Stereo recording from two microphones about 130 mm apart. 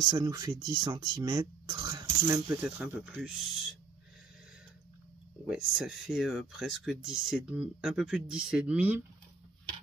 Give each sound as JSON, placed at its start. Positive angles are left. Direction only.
{"t": 0.0, "sound": "speech", "side_deg": -25}
{"t": 3.0, "sound": "speech", "side_deg": -5}
{"t": 5.5, "sound": "speech", "side_deg": -5}